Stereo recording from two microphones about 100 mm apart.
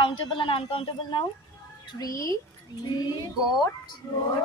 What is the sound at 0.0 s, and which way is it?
A woman's voice, 60° left (ahead or behind).